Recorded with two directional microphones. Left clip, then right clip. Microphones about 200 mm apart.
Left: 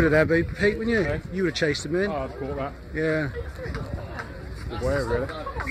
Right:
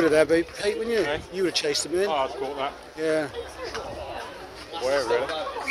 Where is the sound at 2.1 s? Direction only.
50° left (ahead or behind).